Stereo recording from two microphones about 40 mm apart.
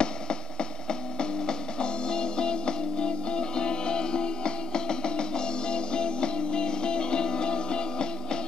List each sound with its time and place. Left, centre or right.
0.0 s mains hum: left